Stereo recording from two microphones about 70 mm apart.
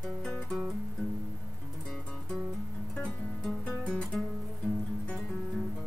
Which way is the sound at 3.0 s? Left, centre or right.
Centre.